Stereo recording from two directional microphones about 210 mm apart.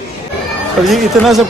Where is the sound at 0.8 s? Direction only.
Centre (ahead or behind).